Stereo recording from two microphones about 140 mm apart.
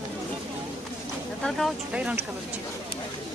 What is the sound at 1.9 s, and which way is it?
Speech, 10° right (ahead or behind).